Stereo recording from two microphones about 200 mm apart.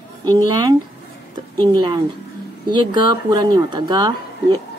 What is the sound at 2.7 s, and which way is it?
Speech, 20° right (ahead or behind).